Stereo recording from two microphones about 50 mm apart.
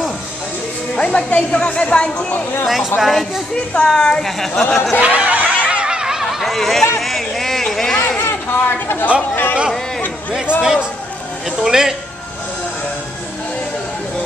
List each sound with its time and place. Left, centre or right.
0.9 s speech: centre
2.6 s speech: centre
3.5 s a child's voice: centre
4.2 s speech: centre
4.9 s speech: right
5.7 s a sound: centre
6.4 s speech: centre
7.0 s a sound: centre
8.2 s speech: left
10.6 s a man's voice: centre